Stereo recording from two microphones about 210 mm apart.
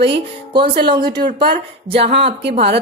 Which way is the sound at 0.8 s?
20° right (ahead or behind).